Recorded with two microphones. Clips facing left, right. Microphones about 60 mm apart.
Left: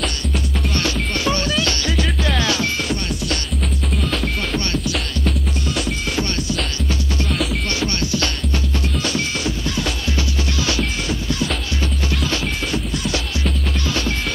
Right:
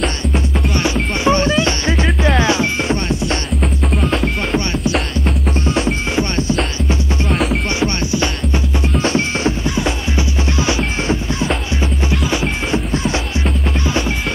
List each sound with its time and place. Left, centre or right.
0.0 s music: centre
4.1 s music: centre
5.8 s music: right
12.7 s music: right